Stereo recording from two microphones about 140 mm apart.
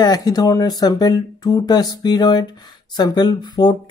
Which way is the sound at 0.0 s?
30° left (ahead or behind).